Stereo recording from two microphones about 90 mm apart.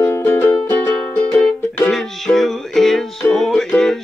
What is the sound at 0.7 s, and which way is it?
Music, 15° left (ahead or behind).